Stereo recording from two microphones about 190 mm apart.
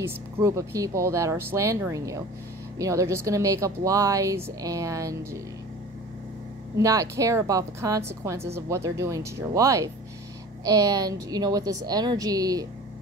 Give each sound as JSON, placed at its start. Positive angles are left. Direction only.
{"t": 0.0, "sound": "a woman's voice", "side_deg": -15}
{"t": 6.8, "sound": "a woman's voice", "side_deg": -15}